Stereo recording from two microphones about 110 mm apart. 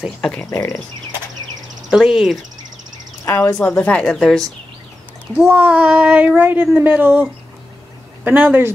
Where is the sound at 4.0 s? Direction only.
Centre (ahead or behind).